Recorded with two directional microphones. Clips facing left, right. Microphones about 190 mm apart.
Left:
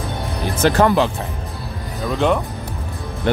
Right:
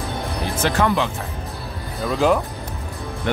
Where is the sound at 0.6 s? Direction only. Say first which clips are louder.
Left 5 dB; 40° left (ahead or behind).